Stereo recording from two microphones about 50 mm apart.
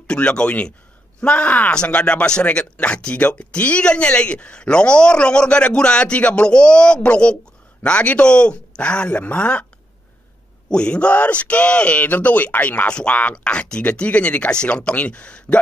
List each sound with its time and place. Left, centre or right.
0.0 s speech: left
10.7 s speech: left
12.8 s speech: left